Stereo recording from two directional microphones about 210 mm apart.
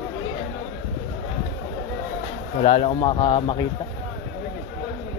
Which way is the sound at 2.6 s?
30° left (ahead or behind).